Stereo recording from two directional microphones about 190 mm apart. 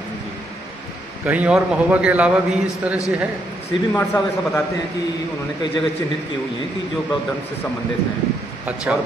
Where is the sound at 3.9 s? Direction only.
15° left (ahead or behind).